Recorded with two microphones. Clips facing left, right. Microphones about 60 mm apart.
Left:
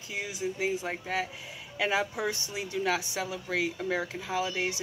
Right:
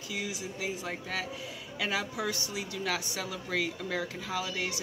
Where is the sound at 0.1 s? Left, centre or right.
Left.